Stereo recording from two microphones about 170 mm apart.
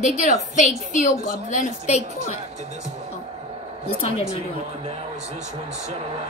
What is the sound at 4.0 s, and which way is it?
Speech, 35° left (ahead or behind).